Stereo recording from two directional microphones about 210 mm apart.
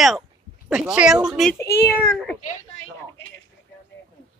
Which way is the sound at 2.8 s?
60° left (ahead or behind).